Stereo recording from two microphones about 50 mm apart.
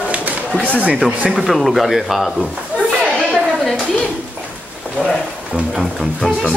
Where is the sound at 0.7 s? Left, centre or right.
Right.